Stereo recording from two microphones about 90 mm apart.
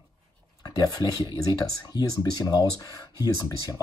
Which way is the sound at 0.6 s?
45° left (ahead or behind).